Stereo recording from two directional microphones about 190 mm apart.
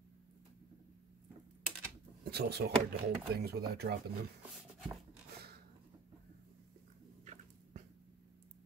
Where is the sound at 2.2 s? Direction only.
55° right (ahead or behind).